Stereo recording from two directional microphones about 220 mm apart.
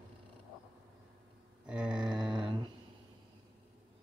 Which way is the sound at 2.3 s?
20° right (ahead or behind).